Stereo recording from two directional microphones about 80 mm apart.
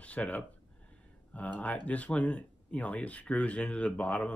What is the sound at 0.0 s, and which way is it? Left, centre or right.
Speech, centre.